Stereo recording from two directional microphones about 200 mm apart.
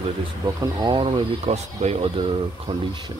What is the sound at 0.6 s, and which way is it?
Speech, 20° right (ahead or behind).